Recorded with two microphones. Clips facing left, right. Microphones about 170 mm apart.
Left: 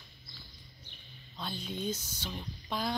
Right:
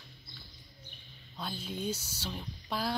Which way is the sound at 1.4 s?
5° right (ahead or behind).